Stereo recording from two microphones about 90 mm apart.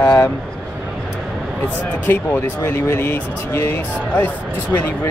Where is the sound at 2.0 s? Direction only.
20° left (ahead or behind).